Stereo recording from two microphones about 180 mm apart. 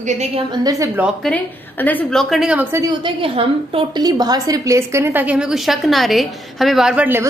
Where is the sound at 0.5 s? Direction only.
20° right (ahead or behind).